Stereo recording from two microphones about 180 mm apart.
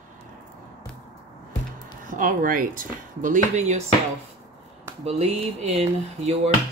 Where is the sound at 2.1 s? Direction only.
50° right (ahead or behind).